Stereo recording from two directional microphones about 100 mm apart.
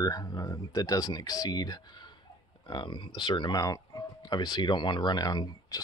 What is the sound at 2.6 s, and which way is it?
Speech, 55° left (ahead or behind).